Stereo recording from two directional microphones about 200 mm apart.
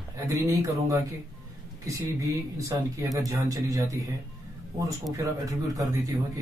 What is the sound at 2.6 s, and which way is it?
Speech, 15° right (ahead or behind).